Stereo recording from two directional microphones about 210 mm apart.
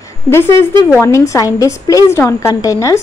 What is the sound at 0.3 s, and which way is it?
A woman's voice, 10° left (ahead or behind).